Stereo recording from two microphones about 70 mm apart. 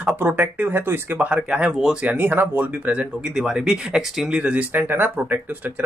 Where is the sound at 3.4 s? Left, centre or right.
Centre; by 5.4 s right.